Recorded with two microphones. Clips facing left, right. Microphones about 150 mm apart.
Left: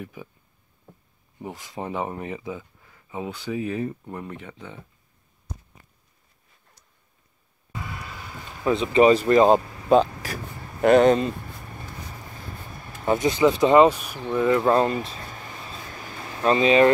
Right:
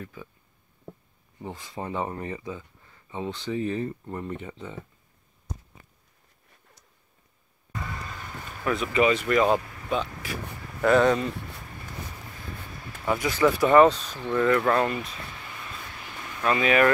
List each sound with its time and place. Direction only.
0.0 s speech: 15° left (ahead or behind)
1.4 s speech: 15° left (ahead or behind)
8.6 s speech: 25° left (ahead or behind)
10.8 s speech: 20° left (ahead or behind)
13.0 s speech: 25° left (ahead or behind)